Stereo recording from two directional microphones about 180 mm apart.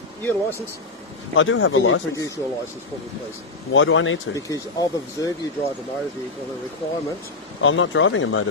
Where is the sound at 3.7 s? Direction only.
90° left.